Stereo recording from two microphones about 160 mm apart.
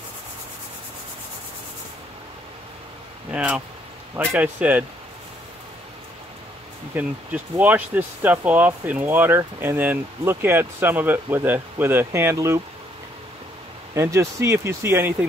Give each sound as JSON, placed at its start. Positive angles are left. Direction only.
{"t": 3.3, "sound": "speech", "side_deg": -10}
{"t": 6.9, "sound": "speech", "side_deg": -10}
{"t": 13.9, "sound": "speech", "side_deg": -20}